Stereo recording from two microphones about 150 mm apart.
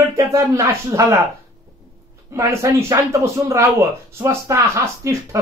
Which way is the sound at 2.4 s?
20° right (ahead or behind).